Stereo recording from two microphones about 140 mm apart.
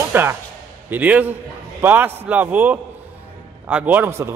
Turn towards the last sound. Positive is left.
turn(degrees=-15)  # may be behind; listen again after turning